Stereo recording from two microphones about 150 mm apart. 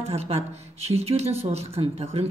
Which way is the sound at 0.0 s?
40° right (ahead or behind).